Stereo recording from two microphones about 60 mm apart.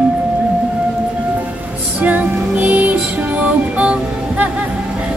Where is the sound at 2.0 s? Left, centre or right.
Right.